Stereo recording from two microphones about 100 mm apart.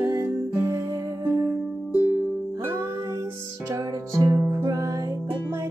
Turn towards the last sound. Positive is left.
turn(degrees=-35)  # may be behind; listen again after turning